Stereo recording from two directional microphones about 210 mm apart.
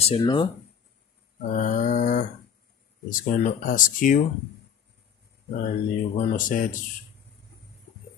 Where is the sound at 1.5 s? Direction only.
35° left (ahead or behind).